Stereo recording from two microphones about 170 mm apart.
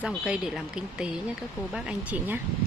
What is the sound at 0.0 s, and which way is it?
Speech, 5° right (ahead or behind).